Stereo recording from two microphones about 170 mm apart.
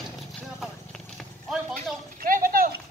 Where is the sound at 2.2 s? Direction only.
55° right (ahead or behind).